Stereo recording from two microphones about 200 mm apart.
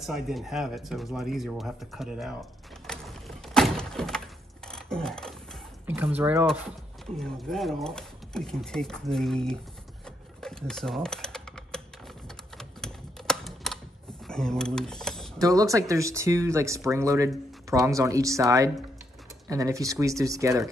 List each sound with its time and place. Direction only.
0.0 s speech: centre (ahead or behind)
2.9 s a sound: centre (ahead or behind)
6.1 s speech: 10° right (ahead or behind)
7.2 s speech: centre (ahead or behind)
10.0 s typewriter: 5° left (ahead or behind)
12.5 s typing: 5° left (ahead or behind)
14.2 s speech: 5° left (ahead or behind)
15.4 s speech: 15° right (ahead or behind)